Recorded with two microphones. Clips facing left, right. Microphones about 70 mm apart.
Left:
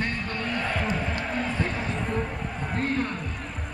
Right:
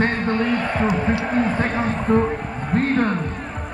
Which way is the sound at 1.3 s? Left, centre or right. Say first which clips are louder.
Right 8 dB; right.